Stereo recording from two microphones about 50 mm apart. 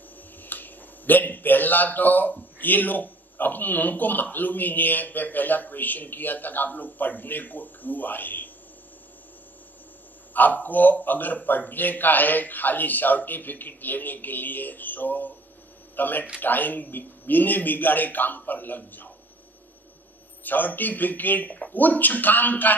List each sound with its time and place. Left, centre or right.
0.4 s a sound: left
2.6 s a man's voice: left
10.3 s a man's voice: left
20.4 s a man's voice: left